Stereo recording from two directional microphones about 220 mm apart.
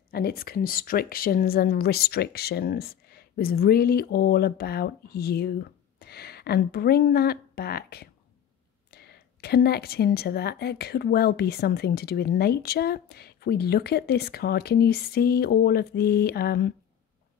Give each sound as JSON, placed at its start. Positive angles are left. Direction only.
{"t": 0.1, "sound": "speech", "side_deg": 45}